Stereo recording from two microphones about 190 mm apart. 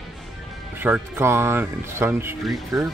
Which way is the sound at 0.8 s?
10° right (ahead or behind).